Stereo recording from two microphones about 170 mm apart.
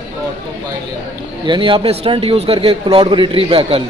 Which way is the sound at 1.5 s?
30° right (ahead or behind).